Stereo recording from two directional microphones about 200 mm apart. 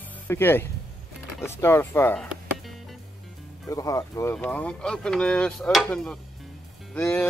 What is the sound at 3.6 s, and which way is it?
Speech, 15° left (ahead or behind).